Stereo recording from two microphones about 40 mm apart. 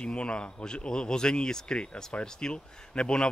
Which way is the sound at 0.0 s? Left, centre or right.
Left.